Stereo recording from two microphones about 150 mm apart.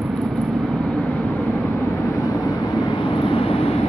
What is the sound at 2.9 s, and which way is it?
Vehicle, 35° left (ahead or behind).